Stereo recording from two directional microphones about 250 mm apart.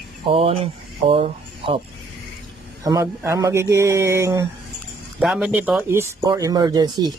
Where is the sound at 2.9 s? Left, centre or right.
Centre.